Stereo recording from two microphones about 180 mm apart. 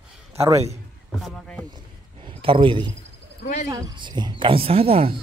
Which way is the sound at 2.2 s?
30° right (ahead or behind).